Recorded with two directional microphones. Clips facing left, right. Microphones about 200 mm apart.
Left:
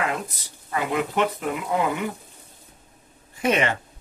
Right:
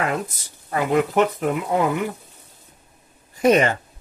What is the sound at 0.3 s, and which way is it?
Speech, 45° right (ahead or behind).